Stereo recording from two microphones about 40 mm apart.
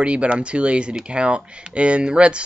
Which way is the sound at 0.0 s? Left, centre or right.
Right.